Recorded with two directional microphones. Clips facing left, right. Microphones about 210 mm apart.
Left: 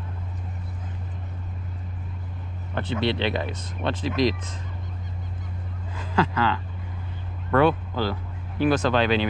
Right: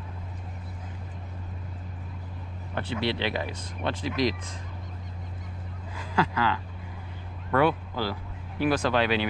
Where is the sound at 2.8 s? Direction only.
25° left (ahead or behind).